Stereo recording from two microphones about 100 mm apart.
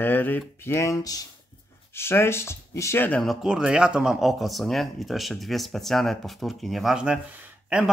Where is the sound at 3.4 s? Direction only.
5° right (ahead or behind).